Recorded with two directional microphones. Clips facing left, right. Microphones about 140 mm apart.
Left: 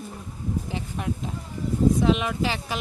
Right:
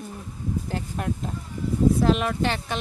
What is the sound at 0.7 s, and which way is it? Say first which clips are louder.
Speech: right 1 dB; centre (ahead or behind).